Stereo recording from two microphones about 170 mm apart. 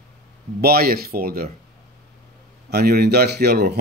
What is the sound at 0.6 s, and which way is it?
Speech, 60° right (ahead or behind).